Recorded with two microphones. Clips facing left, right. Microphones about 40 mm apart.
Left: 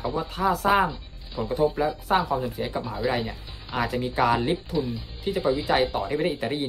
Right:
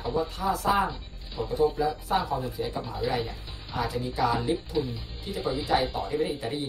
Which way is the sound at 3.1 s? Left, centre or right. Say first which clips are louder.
Left 2 dB; left.